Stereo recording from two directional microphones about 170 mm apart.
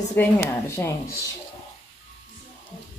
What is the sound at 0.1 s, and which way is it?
A woman's voice, 15° left (ahead or behind).